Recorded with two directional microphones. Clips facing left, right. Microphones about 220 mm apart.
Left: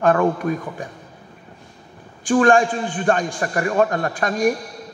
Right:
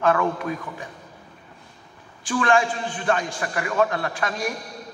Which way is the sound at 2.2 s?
35° left (ahead or behind).